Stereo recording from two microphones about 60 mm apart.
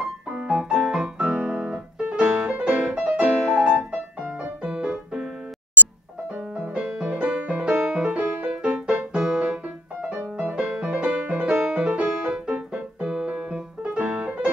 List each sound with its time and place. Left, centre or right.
0.3 s piano: centre
6.5 s music: centre
11.7 s keyboard: centre